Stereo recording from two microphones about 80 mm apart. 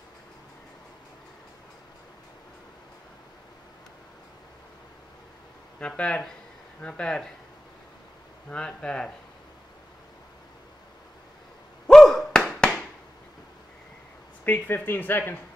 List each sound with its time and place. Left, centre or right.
5.8 s speech: centre
8.5 s speech: centre
11.9 s thunk: centre
14.4 s speech: left